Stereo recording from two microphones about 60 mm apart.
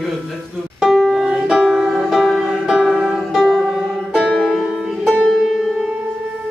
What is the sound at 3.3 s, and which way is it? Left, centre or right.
Music, centre.